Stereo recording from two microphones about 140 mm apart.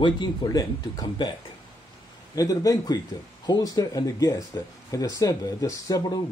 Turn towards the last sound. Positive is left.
turn(degrees=25)  # may be behind; listen again after turning